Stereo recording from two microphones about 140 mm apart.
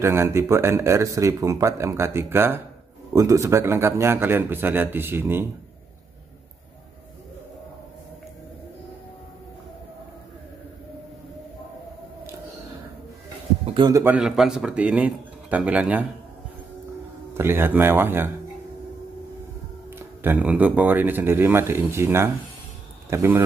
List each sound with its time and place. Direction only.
0.0 s speech: 20° right (ahead or behind)
13.7 s speech: 30° right (ahead or behind)
14.0 s speech: 5° right (ahead or behind)
17.3 s speech: 15° right (ahead or behind)
20.0 s speech: 15° right (ahead or behind)